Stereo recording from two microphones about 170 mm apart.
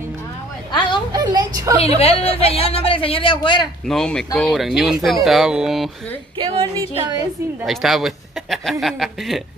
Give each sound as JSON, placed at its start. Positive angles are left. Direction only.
{"t": 0.7, "sound": "a sound", "side_deg": 25}
{"t": 1.1, "sound": "speech", "side_deg": -25}
{"t": 2.0, "sound": "speech", "side_deg": 35}
{"t": 3.8, "sound": "speech", "side_deg": 5}
{"t": 6.3, "sound": "a woman's voice", "side_deg": -30}
{"t": 7.6, "sound": "speech", "side_deg": 0}